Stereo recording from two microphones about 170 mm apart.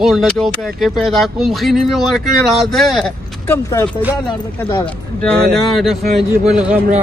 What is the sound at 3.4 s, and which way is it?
Speech, 15° left (ahead or behind).